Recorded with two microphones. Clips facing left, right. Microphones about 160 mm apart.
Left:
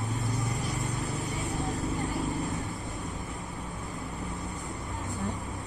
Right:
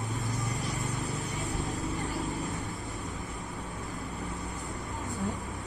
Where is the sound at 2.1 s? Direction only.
20° left (ahead or behind).